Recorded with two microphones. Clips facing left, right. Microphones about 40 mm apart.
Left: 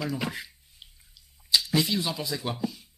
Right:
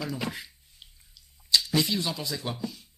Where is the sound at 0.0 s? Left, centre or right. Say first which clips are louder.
Left 2 dB; centre.